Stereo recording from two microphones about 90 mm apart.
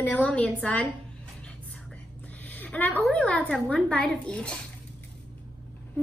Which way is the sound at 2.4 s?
20° left (ahead or behind).